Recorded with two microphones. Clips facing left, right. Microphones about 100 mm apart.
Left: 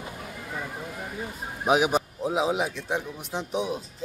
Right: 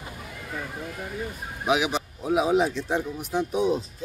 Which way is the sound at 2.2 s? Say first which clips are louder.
Right 8 dB; 20° left (ahead or behind).